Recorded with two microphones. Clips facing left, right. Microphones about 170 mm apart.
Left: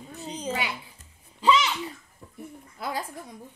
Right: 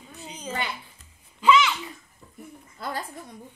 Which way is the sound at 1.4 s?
35° left (ahead or behind).